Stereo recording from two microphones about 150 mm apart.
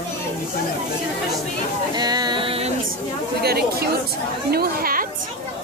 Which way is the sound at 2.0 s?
25° right (ahead or behind).